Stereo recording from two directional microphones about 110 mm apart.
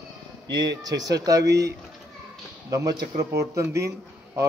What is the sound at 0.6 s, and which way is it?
A man's voice, 35° right (ahead or behind).